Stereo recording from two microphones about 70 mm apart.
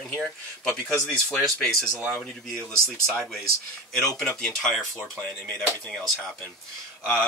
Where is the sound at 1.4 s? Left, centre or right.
Centre.